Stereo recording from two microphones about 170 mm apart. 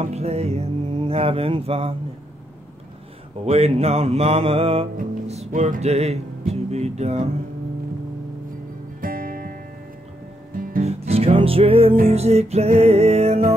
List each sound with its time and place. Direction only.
0.0 s music: 40° right (ahead or behind)
3.4 s music: 35° right (ahead or behind)
9.0 s music: 55° right (ahead or behind)
10.5 s guitar: 55° right (ahead or behind)
10.8 s music: 40° right (ahead or behind)